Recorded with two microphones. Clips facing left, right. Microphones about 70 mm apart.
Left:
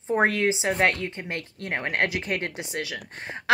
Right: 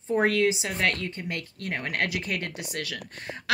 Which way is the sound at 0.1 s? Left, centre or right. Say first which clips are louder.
Left 1 dB; left.